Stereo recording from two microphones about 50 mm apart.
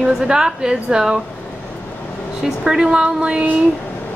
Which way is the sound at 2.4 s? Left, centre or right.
Centre.